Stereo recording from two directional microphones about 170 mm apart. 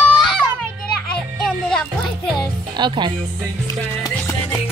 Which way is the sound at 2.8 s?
25° right (ahead or behind).